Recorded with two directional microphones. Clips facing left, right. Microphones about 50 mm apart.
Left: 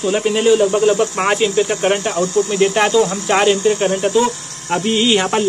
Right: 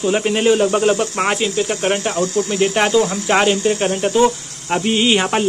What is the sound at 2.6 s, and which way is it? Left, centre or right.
Speech, centre.